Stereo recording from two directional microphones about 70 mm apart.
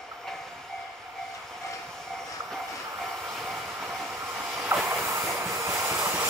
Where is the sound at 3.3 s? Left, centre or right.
Centre.